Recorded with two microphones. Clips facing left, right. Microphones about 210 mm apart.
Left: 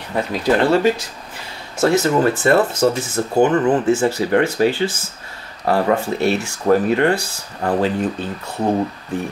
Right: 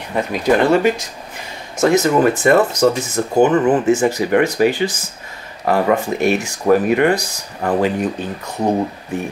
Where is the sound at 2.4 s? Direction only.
15° right (ahead or behind).